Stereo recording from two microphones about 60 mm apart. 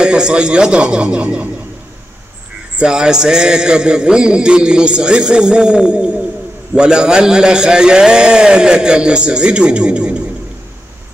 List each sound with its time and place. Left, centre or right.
0.0 s a man's voice: centre
2.8 s a man's voice: centre